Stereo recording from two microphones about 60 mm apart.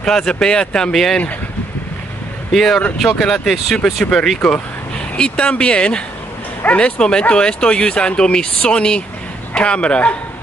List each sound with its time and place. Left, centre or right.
0.0 s speech: centre
2.5 s a man's voice: centre